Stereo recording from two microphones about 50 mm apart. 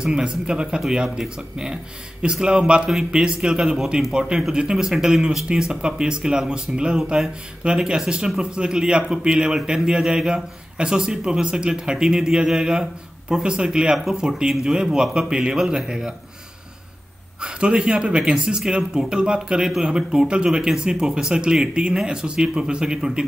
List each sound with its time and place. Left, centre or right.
0.0 s speech: centre
17.4 s speech: centre